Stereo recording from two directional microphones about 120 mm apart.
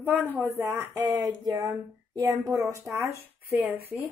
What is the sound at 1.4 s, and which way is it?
Speech, 30° right (ahead or behind).